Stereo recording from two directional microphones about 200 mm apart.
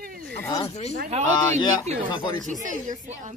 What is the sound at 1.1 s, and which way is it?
Speech, 30° right (ahead or behind).